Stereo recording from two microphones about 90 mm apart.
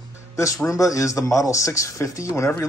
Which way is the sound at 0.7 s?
40° left (ahead or behind).